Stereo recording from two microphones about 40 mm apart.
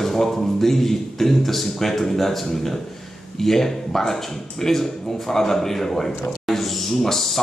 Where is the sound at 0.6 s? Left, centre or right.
Centre.